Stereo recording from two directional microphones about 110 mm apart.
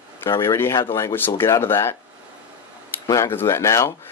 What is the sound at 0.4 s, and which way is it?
Speech, 25° left (ahead or behind).